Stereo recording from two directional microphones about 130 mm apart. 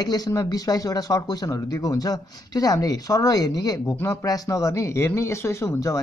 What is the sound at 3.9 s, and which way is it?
Speech, 15° left (ahead or behind).